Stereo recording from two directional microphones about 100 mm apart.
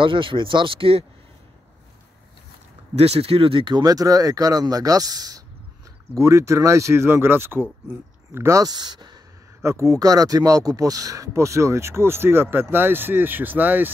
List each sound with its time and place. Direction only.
0.0 s speech: 60° right (ahead or behind)
3.0 s speech: 80° right; by 3.8 s 55° right (ahead or behind)
3.8 s speech: 35° right (ahead or behind)
6.1 s speech: 30° right (ahead or behind); by 9.2 s 45° right (ahead or behind)
9.6 s speech: 30° right (ahead or behind)